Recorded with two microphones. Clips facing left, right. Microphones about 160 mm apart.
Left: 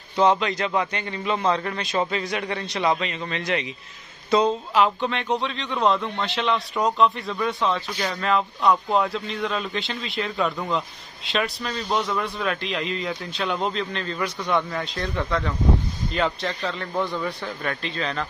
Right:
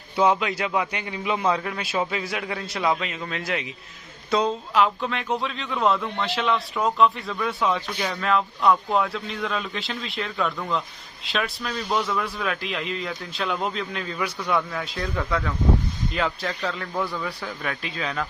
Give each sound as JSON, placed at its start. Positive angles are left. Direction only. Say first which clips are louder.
{"t": 0.1, "sound": "speech", "louder": "left 1 dB", "side_deg": -10}